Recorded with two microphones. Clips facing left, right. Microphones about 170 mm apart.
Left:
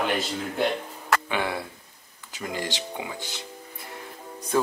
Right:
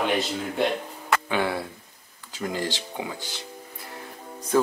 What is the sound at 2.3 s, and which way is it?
Speech, 15° left (ahead or behind).